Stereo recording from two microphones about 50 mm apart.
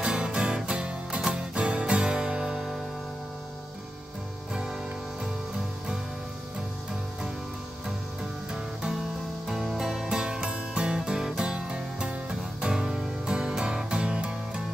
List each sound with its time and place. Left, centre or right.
0.0 s music: centre
9.5 s music: centre